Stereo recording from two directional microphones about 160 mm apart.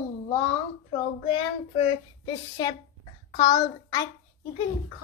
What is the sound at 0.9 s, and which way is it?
A woman's voice, 35° left (ahead or behind).